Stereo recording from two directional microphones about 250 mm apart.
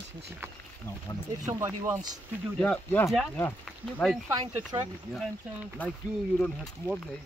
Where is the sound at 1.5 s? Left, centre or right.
Centre.